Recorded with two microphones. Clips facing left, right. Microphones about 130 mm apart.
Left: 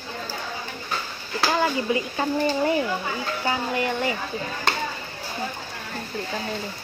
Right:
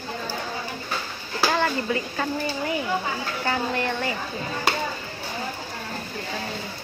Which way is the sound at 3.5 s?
15° left (ahead or behind).